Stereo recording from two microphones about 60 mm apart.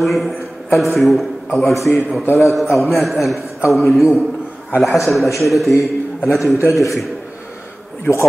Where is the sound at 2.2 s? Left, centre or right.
Left.